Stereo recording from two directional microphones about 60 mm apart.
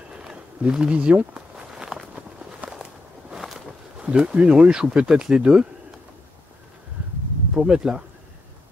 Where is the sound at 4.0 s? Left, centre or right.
Centre.